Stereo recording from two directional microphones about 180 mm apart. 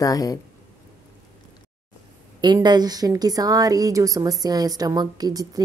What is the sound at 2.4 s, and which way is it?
A woman's voice, 25° right (ahead or behind).